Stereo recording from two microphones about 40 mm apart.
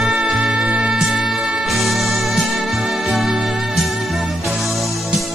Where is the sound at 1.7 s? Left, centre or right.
Centre.